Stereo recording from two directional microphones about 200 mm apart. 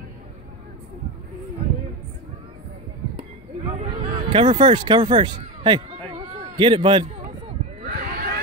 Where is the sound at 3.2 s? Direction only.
30° right (ahead or behind).